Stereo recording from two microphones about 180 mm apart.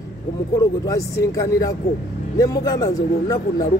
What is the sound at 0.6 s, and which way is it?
Speech, 20° left (ahead or behind).